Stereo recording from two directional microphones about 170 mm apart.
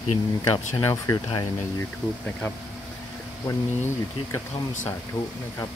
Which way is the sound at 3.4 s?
15° left (ahead or behind).